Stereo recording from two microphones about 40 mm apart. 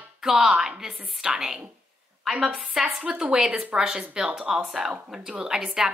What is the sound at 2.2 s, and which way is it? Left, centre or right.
Speech, centre.